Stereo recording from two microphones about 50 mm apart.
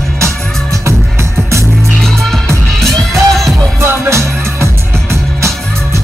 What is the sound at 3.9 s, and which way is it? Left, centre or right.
Music, right.